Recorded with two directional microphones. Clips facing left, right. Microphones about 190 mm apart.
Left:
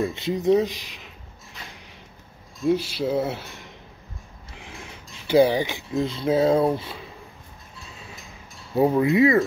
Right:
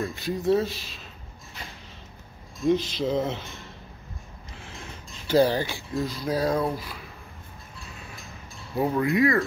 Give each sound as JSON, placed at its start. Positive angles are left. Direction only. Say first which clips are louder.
{"t": 0.0, "sound": "speech", "louder": "left 4 dB", "side_deg": 20}
{"t": 2.6, "sound": "speech", "louder": "left 1 dB", "side_deg": 10}
{"t": 8.7, "sound": "pulleys", "louder": "left 5 dB", "side_deg": 25}